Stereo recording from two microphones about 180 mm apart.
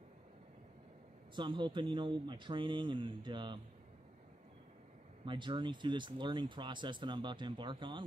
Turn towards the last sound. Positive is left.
turn(degrees=-25)  # may be behind; listen again after turning